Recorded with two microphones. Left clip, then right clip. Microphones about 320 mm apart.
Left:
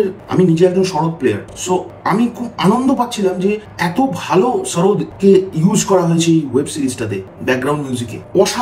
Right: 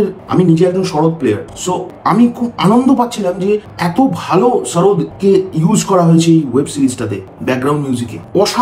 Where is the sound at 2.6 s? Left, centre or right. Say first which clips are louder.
Right 3 dB; centre.